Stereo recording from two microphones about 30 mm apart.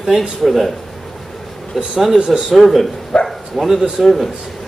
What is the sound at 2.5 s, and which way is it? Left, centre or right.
Speech, centre.